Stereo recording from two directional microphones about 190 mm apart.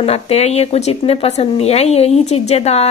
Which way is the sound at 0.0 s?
35° left (ahead or behind).